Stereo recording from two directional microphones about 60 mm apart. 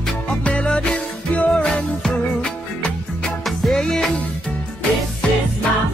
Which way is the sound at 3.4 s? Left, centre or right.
Centre.